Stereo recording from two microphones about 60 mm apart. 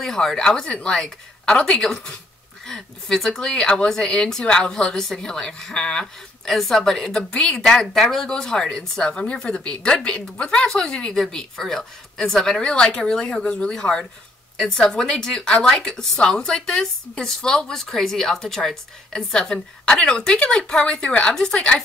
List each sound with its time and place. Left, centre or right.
0.0 s speech: centre